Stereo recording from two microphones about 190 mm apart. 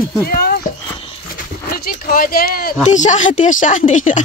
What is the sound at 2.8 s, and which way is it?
Speech, 40° left (ahead or behind).